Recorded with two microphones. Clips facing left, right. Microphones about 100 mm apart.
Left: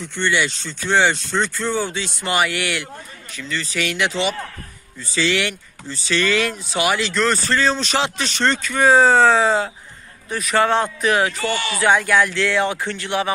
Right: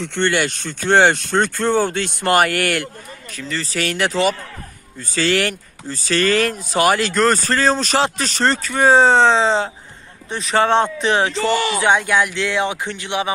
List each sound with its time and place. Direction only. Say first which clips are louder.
0.0 s speech: right 4 dB; 75° right (ahead or behind)
0.3 s speech: right 1 dB; 50° right (ahead or behind)
3.3 s speech: right 1 dB; 40° right (ahead or behind); by 13.3 s 20° right (ahead or behind)